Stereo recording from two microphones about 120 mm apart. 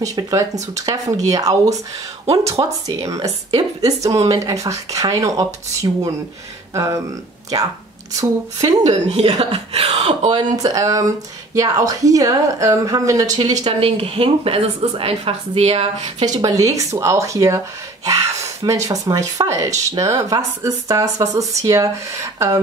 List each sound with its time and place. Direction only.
0.0 s speech: 30° right (ahead or behind)
8.2 s speech: 30° right (ahead or behind)
8.8 s speech: 60° right (ahead or behind)
10.3 s speech: 30° right (ahead or behind)
13.7 s a woman's voice: 55° right (ahead or behind)
16.3 s speech: 30° right (ahead or behind)
18.0 s a sound: 30° right (ahead or behind)
18.7 s speech: 30° right (ahead or behind)